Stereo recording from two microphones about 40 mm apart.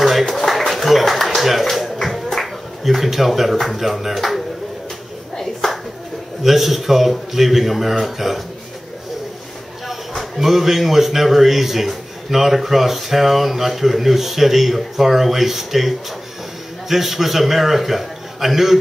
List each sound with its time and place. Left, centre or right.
0.0 s a sound: centre
3.5 s a man's voice: centre
5.4 s a sound: centre
6.4 s a man's voice: centre
9.8 s a man's voice: centre
16.9 s a man's voice: centre